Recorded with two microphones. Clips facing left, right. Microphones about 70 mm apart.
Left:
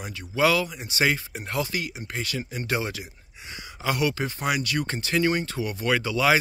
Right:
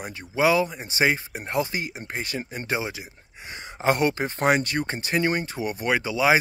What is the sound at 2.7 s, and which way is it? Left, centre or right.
Speech, right.